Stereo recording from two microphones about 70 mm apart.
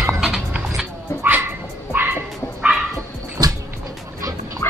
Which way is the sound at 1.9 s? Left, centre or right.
Right.